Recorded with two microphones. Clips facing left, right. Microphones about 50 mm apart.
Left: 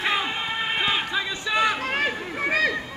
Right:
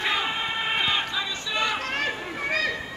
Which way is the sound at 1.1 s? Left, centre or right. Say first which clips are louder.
Left 4 dB; centre.